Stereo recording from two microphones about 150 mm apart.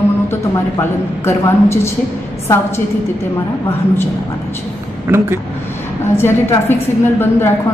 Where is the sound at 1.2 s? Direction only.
15° left (ahead or behind).